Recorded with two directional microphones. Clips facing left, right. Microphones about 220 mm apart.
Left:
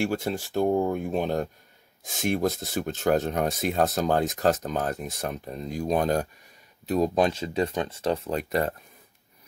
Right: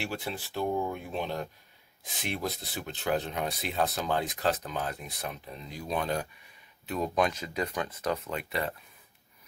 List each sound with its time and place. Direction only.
0.0 s speech: 45° left (ahead or behind)